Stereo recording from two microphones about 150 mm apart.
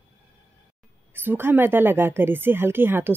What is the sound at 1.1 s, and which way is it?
A woman's voice, 15° right (ahead or behind).